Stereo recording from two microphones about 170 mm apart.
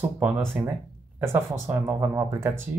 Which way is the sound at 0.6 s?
10° right (ahead or behind).